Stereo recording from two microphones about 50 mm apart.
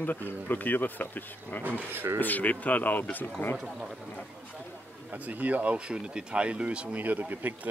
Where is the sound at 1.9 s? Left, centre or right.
Right.